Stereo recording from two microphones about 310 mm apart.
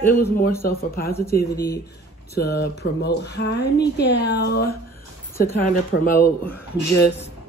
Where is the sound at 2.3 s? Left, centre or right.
Left.